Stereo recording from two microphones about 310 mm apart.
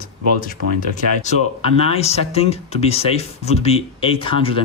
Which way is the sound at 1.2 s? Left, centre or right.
Left.